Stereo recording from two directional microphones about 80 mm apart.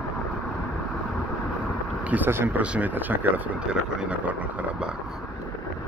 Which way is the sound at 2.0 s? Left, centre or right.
Right.